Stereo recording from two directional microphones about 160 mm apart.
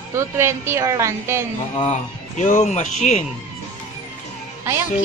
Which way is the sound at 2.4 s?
45° left (ahead or behind).